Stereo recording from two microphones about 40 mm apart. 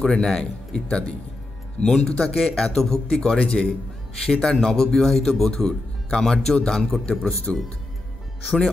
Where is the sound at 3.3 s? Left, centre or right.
Left.